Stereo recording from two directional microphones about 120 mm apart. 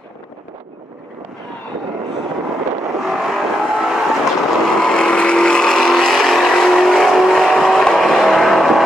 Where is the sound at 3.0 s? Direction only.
Centre (ahead or behind).